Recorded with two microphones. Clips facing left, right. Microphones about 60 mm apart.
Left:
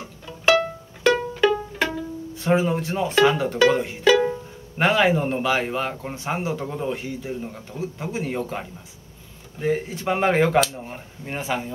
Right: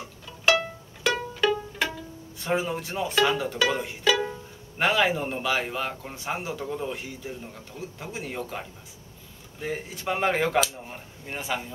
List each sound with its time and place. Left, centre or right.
0.5 s pizzicato: centre
2.3 s music: centre
2.9 s speech: centre
4.2 s speech: centre